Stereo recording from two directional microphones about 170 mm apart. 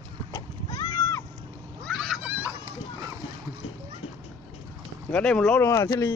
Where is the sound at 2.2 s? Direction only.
10° right (ahead or behind).